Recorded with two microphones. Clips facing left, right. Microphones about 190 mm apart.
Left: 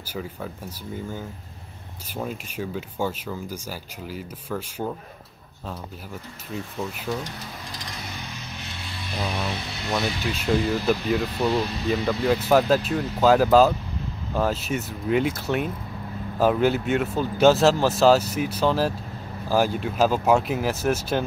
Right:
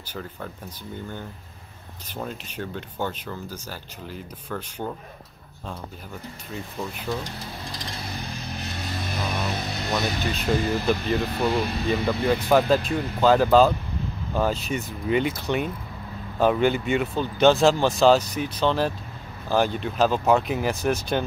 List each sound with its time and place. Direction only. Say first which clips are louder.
0.0 s speech: left 3 dB; 5° left (ahead or behind)
6.5 s speech: left 2 dB; 5° left (ahead or behind)
8.2 s music: right 4 dB; 35° right (ahead or behind)
10.5 s speech: left 1 dB; 5° right (ahead or behind)